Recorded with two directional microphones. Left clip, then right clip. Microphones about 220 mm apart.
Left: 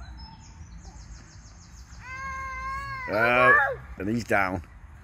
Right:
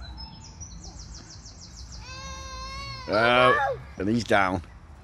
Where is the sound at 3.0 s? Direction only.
Centre (ahead or behind).